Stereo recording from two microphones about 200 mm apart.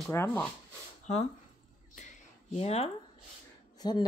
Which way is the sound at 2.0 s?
35° left (ahead or behind).